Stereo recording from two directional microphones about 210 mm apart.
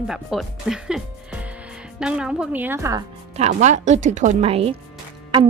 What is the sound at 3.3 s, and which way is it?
A woman's voice, 30° right (ahead or behind).